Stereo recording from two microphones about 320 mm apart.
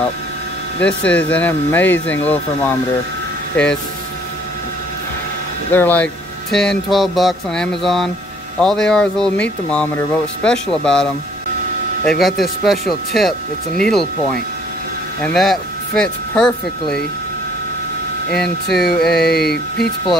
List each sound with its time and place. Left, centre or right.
0.7 s speech: centre
5.7 s speech: centre
18.4 s speech: centre
19.3 s speech: left